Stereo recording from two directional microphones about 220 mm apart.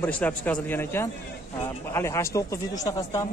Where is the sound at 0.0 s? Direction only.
5° left (ahead or behind).